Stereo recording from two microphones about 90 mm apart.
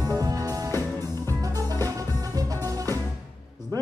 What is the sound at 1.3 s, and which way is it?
Music, 40° right (ahead or behind).